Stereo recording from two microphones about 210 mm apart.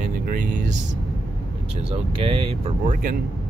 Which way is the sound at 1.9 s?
25° right (ahead or behind).